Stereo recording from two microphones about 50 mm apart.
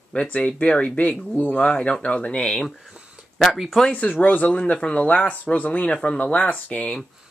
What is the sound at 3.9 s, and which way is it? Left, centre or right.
Speech, left.